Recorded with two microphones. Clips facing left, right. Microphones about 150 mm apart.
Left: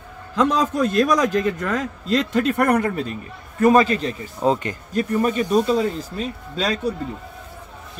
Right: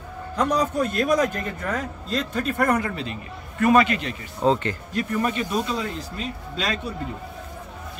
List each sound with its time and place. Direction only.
0.4 s a man's voice: 90° left; by 3.2 s 50° left (ahead or behind)
3.5 s speech: 35° left (ahead or behind)
4.4 s speech: 10° left (ahead or behind)
4.9 s speech: 40° left (ahead or behind)